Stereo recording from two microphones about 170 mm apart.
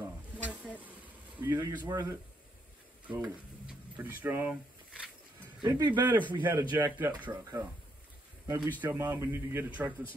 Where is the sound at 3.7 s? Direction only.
10° right (ahead or behind).